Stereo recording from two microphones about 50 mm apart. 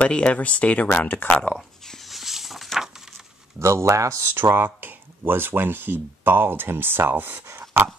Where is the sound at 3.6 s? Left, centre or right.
Right.